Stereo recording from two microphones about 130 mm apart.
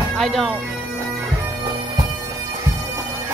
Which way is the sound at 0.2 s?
5° left (ahead or behind).